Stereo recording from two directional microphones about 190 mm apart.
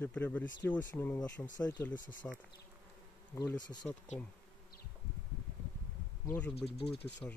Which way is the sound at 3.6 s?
20° left (ahead or behind).